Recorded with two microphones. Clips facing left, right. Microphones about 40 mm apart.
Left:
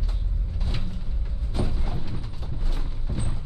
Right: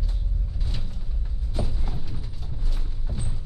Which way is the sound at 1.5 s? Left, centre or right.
Left.